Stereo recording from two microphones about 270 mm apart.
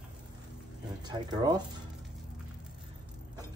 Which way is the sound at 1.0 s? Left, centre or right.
Centre.